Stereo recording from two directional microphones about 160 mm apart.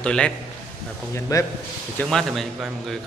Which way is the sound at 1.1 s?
20° left (ahead or behind).